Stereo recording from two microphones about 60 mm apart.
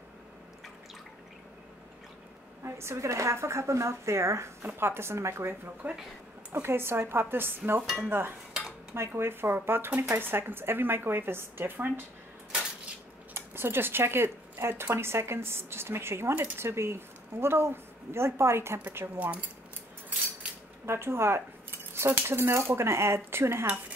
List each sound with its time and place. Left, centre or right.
2.6 s speech: right
5.8 s speech: right
6.5 s speech: right
8.9 s speech: right
13.3 s speech: right
19.1 s speech: right
20.8 s a sound: right
22.2 s speech: right